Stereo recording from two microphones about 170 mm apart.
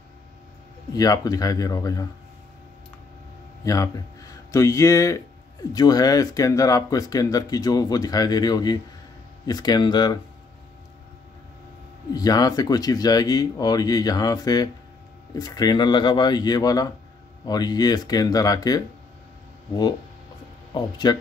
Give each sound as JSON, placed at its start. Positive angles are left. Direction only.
{"t": 0.9, "sound": "speech", "side_deg": 20}
{"t": 3.6, "sound": "speech", "side_deg": 20}
{"t": 12.1, "sound": "speech", "side_deg": 20}
{"t": 20.7, "sound": "speech", "side_deg": 25}